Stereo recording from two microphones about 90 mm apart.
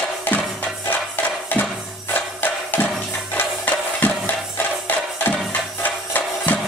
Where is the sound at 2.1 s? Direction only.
20° left (ahead or behind).